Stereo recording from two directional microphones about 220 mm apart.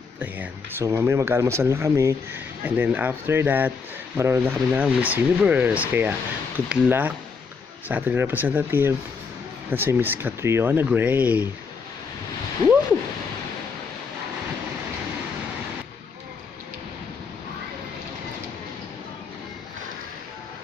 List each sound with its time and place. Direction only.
0.2 s speech: 10° right (ahead or behind)